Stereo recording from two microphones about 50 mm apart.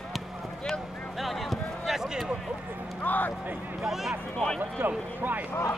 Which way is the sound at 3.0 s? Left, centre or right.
Left.